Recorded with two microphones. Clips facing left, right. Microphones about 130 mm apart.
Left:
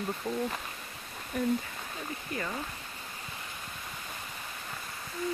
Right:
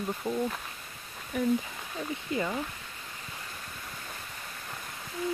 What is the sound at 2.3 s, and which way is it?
Speech, 25° right (ahead or behind).